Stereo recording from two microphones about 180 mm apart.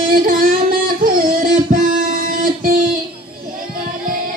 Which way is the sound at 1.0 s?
55° right (ahead or behind).